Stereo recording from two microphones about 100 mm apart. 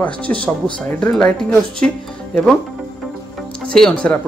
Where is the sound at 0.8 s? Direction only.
15° left (ahead or behind).